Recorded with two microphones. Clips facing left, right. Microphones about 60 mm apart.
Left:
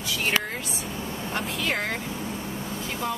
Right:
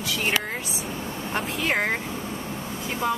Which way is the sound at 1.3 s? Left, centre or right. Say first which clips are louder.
Right 3 dB; right.